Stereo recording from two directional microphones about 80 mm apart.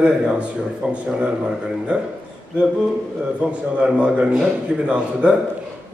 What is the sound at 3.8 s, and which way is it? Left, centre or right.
Speech, centre.